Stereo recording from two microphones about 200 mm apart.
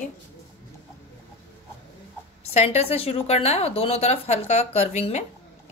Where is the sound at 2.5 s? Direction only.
30° left (ahead or behind).